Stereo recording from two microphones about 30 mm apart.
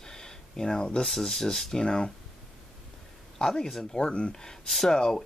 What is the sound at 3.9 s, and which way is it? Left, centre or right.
Speech, left.